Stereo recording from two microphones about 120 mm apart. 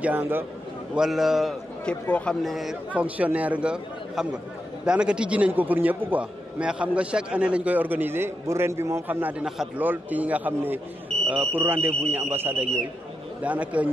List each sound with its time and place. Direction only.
0.0 s a man's voice: 15° right (ahead or behind)
0.9 s a man's voice: 5° right (ahead or behind)
1.9 s speech: 10° left (ahead or behind)
2.4 s a man's voice: centre (ahead or behind)
2.9 s a man's voice: 10° right (ahead or behind)